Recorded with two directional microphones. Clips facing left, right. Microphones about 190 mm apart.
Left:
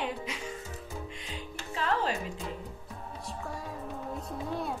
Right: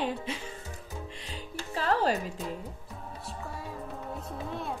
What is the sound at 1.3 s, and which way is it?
Music, 35° right (ahead or behind).